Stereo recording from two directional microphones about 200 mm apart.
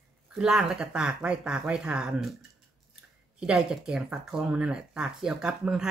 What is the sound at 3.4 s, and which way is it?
Speech, 5° right (ahead or behind).